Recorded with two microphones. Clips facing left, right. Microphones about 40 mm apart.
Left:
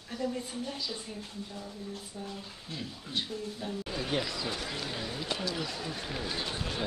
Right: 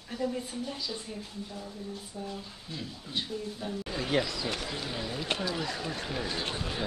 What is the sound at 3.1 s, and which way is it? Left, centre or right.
Speech, centre.